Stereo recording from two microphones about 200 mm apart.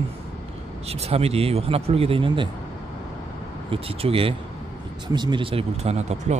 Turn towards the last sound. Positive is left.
turn(degrees=-35)  # may be behind; listen again after turning